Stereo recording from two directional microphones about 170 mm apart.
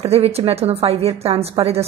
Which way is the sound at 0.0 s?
35° right (ahead or behind).